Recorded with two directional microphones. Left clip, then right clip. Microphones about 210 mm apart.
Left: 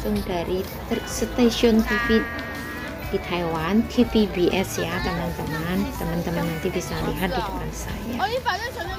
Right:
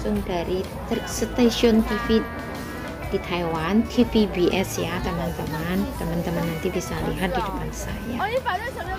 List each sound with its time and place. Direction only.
0.0 s speech: centre (ahead or behind)
8.2 s speech: 55° left (ahead or behind)